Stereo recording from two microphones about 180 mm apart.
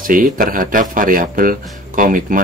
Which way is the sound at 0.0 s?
50° right (ahead or behind).